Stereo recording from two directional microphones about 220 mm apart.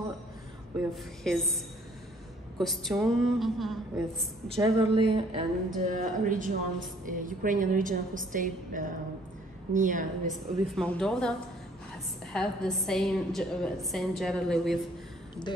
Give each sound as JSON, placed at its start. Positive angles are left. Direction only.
{"t": 0.7, "sound": "a woman's voice", "side_deg": 0}
{"t": 2.6, "sound": "a woman's voice", "side_deg": 0}
{"t": 4.6, "sound": "a woman's voice", "side_deg": -20}
{"t": 10.3, "sound": "a woman's voice", "side_deg": 5}
{"t": 15.5, "sound": "speech", "side_deg": 20}